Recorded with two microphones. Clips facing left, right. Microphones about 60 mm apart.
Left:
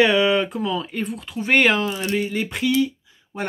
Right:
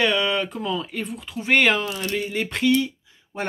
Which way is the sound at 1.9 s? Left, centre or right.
Centre.